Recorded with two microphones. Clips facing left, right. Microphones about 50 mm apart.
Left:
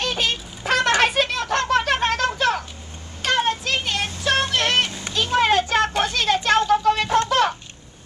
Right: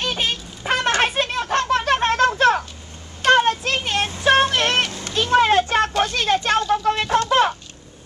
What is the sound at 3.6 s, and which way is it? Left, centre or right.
Vehicle, right.